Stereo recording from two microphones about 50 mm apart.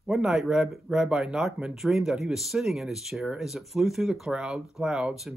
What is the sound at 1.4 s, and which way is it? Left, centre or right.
Speech, centre.